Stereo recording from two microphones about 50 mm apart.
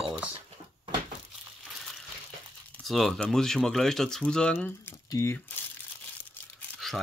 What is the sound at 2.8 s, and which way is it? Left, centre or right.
Speech, centre.